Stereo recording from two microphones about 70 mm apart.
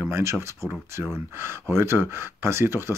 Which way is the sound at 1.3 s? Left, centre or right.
Right.